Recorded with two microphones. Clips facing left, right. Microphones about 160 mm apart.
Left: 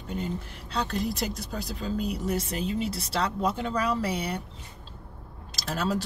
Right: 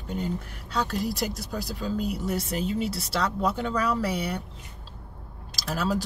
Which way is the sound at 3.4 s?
20° left (ahead or behind).